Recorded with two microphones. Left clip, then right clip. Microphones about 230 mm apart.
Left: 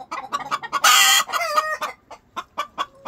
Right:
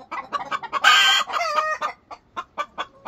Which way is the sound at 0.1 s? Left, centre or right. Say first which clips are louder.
Left 1 dB; left.